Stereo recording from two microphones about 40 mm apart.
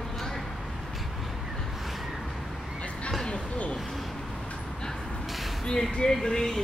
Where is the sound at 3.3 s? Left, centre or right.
Left.